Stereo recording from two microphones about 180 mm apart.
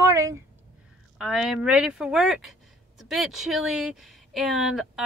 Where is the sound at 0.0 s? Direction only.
15° right (ahead or behind).